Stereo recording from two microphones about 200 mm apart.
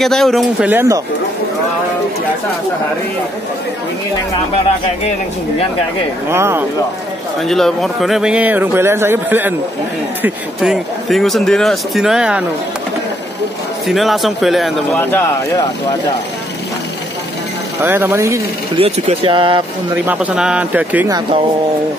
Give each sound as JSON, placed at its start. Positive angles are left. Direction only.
{"t": 0.0, "sound": "speech", "side_deg": 0}
{"t": 6.3, "sound": "speech", "side_deg": -10}
{"t": 7.3, "sound": "speech", "side_deg": 0}
{"t": 13.8, "sound": "speech", "side_deg": 0}
{"t": 15.0, "sound": "speech", "side_deg": 10}
{"t": 17.8, "sound": "speech", "side_deg": -10}
{"t": 18.8, "sound": "speech", "side_deg": -30}
{"t": 20.1, "sound": "speech", "side_deg": -5}